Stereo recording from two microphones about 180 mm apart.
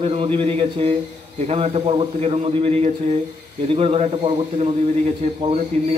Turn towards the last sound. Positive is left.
turn(degrees=-35)  # may be behind; listen again after turning